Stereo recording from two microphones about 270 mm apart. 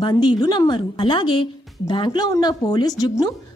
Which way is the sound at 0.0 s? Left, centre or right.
Centre.